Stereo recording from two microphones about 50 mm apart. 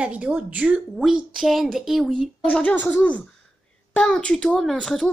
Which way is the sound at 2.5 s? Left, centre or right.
Left.